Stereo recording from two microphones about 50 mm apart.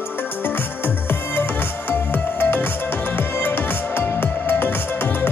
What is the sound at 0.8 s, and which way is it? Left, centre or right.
Music, left.